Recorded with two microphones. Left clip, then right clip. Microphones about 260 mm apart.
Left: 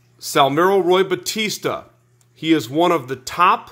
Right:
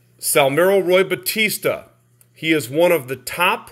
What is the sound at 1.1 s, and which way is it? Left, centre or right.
Speech, left.